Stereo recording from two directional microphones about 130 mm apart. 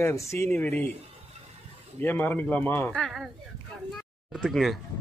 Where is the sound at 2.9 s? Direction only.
Centre (ahead or behind).